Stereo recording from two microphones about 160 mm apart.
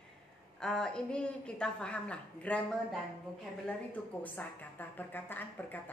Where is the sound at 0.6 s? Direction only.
5° left (ahead or behind).